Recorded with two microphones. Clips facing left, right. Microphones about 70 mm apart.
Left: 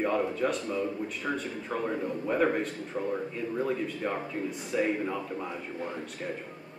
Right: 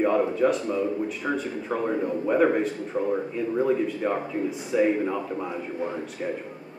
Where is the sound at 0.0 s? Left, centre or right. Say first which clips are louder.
Right 6 dB; centre.